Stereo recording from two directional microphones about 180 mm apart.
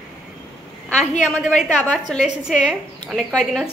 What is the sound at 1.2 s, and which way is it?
A woman's voice, 5° left (ahead or behind).